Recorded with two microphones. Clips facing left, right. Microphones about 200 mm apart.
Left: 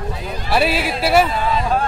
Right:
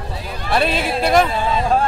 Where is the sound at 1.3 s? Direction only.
25° right (ahead or behind).